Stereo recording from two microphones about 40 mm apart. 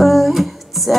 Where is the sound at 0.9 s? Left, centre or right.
Centre.